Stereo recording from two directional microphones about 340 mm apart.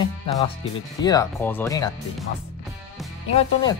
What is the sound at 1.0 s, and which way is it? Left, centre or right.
Speech, centre.